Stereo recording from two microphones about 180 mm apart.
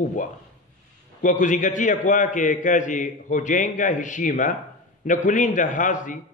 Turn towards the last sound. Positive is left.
turn(degrees=45)  # may be behind; listen again after turning